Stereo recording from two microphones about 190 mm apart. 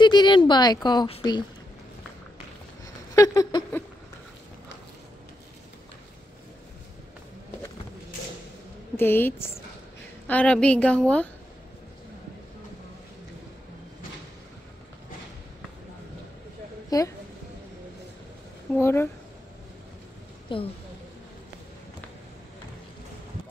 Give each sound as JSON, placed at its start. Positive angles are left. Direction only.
{"t": 0.0, "sound": "speech", "side_deg": 25}
{"t": 3.2, "sound": "speech", "side_deg": 20}
{"t": 8.9, "sound": "a woman's voice", "side_deg": 10}
{"t": 16.9, "sound": "speech", "side_deg": 20}
{"t": 18.8, "sound": "a woman's voice", "side_deg": 15}
{"t": 20.5, "sound": "speech", "side_deg": 25}